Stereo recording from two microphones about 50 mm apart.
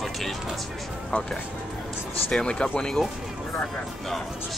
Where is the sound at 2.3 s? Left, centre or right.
Centre.